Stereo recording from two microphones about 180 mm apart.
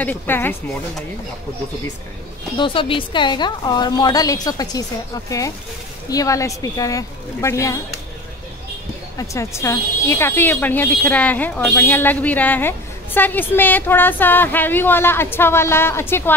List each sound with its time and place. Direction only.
0.0 s speech: 10° left (ahead or behind)
2.5 s a woman's voice: 30° left (ahead or behind)
9.3 s speech: 15° left (ahead or behind)